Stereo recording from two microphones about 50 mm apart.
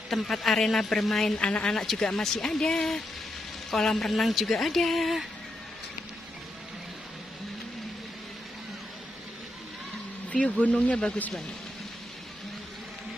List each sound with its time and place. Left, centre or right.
0.1 s speech: centre
1.4 s speech: centre
10.6 s speech: left